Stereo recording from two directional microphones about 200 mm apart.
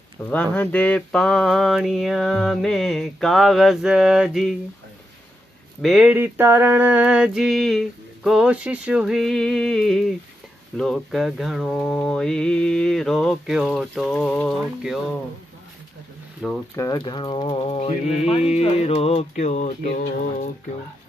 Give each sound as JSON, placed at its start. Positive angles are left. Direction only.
{"t": 0.2, "sound": "mantra", "side_deg": 10}
{"t": 5.8, "sound": "mantra", "side_deg": 0}
{"t": 16.4, "sound": "mantra", "side_deg": -5}
{"t": 16.7, "sound": "speech", "side_deg": 20}
{"t": 18.3, "sound": "music", "side_deg": 30}